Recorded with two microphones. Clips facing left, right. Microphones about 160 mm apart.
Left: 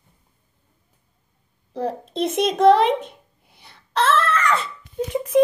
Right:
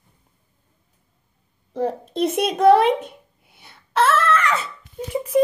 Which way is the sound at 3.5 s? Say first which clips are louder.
Right 2 dB; 5° right (ahead or behind).